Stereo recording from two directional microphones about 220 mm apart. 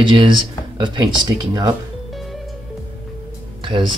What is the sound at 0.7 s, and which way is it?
Speech, 20° right (ahead or behind).